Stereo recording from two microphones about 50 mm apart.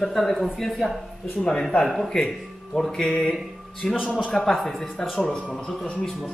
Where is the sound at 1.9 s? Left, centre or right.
Centre.